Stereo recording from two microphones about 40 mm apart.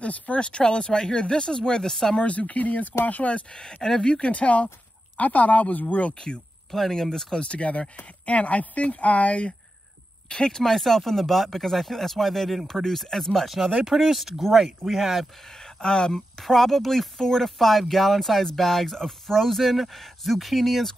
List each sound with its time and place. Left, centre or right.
0.0 s speech: left; by 2.1 s centre
2.1 s speech: left
3.5 s speech: centre
4.3 s speech: left
6.1 s speech: centre
7.4 s speech: left
10.2 s speech: left
10.6 s speech: centre
13.8 s speech: centre
15.6 s speech: centre